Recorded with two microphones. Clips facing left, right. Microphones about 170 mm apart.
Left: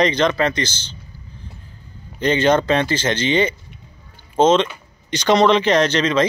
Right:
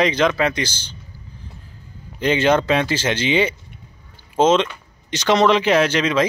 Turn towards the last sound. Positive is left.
turn(degrees=-5)  # may be behind; listen again after turning